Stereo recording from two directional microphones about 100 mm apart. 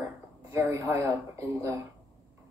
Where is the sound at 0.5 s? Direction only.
30° right (ahead or behind).